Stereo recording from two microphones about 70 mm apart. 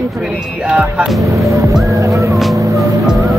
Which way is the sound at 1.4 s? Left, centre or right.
Right.